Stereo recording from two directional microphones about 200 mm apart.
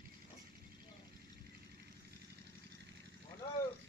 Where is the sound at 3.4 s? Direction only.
20° left (ahead or behind).